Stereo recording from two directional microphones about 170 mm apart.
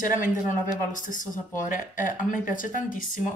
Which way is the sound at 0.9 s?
50° left (ahead or behind).